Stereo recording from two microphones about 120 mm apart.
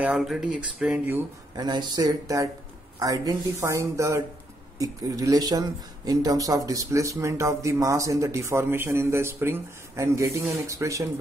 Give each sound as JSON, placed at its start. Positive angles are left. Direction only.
{"t": 0.0, "sound": "speech", "side_deg": -5}
{"t": 1.6, "sound": "speech", "side_deg": -35}